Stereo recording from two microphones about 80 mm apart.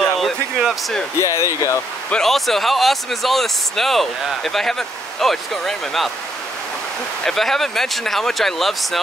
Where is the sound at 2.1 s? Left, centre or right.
Centre.